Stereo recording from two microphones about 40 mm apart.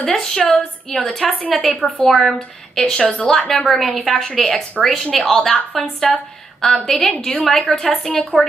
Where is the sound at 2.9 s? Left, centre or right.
Left.